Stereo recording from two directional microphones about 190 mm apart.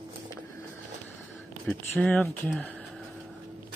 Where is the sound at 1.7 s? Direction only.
10° left (ahead or behind).